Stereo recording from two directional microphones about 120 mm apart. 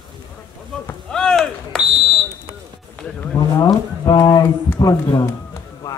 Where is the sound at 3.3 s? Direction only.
30° left (ahead or behind).